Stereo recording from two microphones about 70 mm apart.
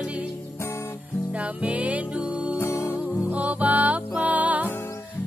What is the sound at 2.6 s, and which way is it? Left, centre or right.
Music, left.